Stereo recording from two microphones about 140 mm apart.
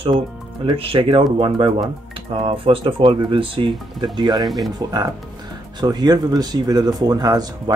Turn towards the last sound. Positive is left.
turn(degrees=-30)  # may be behind; listen again after turning